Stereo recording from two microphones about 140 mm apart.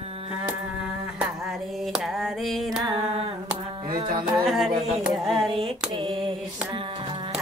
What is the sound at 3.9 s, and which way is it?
Music, 30° right (ahead or behind).